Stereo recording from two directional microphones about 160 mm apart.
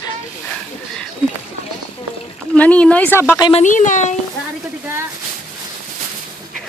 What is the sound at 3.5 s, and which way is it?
Speech, 50° left (ahead or behind).